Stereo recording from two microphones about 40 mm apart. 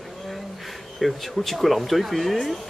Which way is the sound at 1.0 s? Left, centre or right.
Centre.